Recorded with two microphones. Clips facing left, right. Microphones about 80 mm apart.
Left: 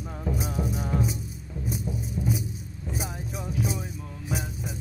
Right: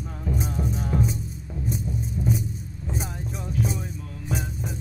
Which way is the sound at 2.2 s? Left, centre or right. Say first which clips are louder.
Right 3 dB; centre.